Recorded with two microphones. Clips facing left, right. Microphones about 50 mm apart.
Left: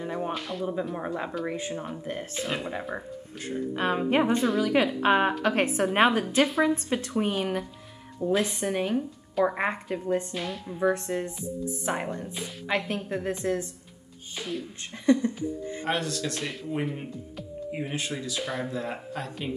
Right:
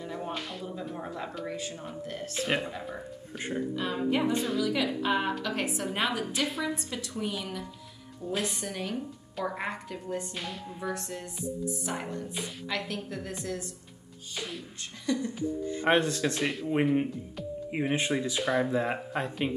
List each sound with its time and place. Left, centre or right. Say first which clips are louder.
0.0 s a sound: left 5 dB; left
0.3 s speech: left 5 dB; centre
0.9 s speech: left 5 dB; left
2.4 s speech: right 2 dB; centre
2.7 s speech: left 5 dB; left
3.3 s speech: even; right
3.7 s a woman's voice: left 6 dB; left
8.3 s speech: left 7 dB; left
10.3 s speech: left 5 dB; centre
10.8 s speech: left 11 dB; left
15.1 s a woman's voice: left 8 dB; left
15.8 s speech: right 5 dB; right
17.6 s speech: right 3 dB; right